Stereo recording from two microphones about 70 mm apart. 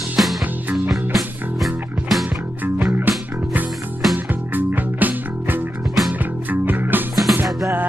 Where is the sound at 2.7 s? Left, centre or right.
Right.